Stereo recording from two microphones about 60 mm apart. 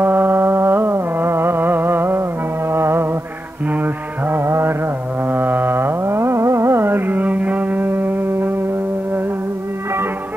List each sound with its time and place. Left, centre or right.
0.0 s music: right
3.6 s music: right